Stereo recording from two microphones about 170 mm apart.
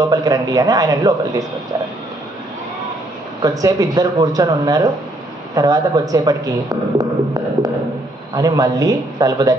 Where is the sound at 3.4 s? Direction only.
20° right (ahead or behind).